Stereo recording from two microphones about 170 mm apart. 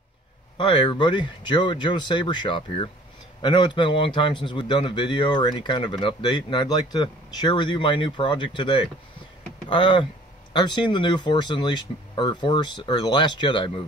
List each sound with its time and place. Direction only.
0.6 s a man's voice: 30° left (ahead or behind)